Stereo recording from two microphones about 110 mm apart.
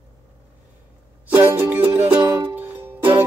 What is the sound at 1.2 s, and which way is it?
Music, 20° right (ahead or behind).